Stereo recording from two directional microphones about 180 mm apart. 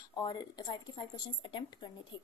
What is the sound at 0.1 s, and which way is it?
Speech, 20° left (ahead or behind).